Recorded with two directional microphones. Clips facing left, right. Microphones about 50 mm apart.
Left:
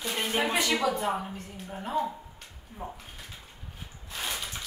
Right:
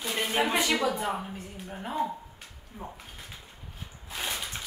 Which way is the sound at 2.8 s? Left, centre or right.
Centre.